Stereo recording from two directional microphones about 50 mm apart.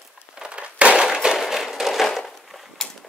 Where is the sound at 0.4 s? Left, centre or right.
Right.